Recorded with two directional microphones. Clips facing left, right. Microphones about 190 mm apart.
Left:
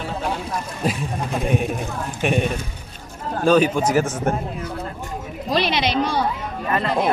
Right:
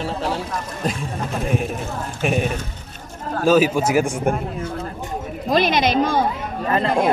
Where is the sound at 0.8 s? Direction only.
5° left (ahead or behind).